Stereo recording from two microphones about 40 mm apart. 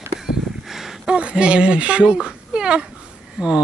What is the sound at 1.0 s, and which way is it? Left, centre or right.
Speech, right.